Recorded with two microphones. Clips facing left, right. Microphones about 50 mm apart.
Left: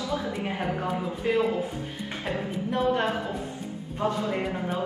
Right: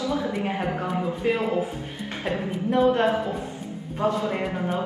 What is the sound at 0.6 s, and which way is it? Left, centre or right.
Speech, centre.